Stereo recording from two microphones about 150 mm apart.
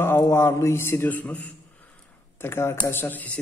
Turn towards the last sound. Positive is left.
turn(degrees=10)  # may be behind; listen again after turning